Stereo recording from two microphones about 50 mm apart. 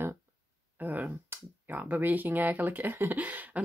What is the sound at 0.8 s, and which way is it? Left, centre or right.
Speech, right.